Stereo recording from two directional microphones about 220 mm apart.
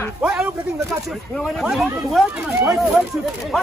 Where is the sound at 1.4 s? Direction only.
Centre (ahead or behind).